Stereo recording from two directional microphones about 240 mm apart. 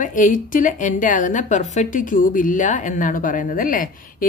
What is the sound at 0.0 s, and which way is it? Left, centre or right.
A woman's voice, left.